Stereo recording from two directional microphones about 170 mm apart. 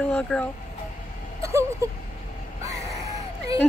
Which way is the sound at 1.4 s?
15° right (ahead or behind).